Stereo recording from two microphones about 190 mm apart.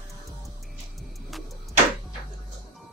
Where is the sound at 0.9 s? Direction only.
Centre (ahead or behind).